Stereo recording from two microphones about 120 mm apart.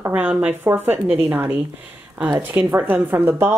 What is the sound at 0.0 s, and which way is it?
Speech, 10° right (ahead or behind).